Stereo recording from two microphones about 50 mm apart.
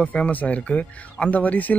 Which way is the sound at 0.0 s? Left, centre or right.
Left.